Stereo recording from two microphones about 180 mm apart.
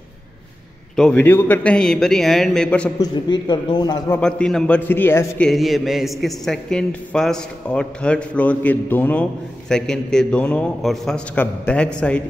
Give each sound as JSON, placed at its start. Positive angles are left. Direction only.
{"t": 0.9, "sound": "a man's voice", "side_deg": 5}
{"t": 3.0, "sound": "a man's voice", "side_deg": 25}
{"t": 4.2, "sound": "a man's voice", "side_deg": 5}
{"t": 5.5, "sound": "a man's voice", "side_deg": 0}